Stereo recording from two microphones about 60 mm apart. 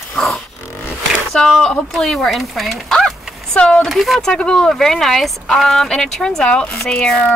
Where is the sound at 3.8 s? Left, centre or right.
Centre.